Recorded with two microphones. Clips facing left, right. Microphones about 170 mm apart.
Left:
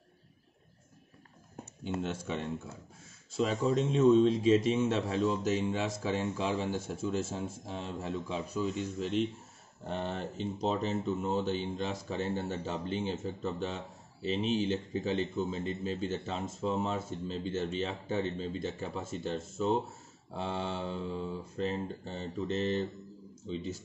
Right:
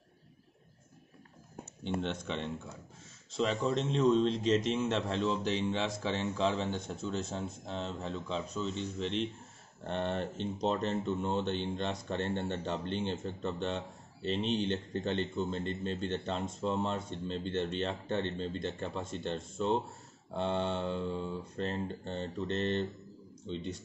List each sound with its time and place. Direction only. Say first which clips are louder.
1.9 s speech: even; 5° left (ahead or behind)